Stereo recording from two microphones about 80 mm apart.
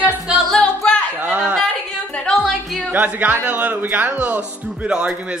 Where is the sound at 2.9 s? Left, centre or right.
Right.